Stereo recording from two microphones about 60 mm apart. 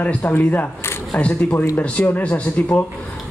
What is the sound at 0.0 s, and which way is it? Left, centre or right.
Speech, left.